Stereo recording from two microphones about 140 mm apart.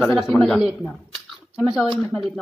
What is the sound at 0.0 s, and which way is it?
Speech, centre (ahead or behind).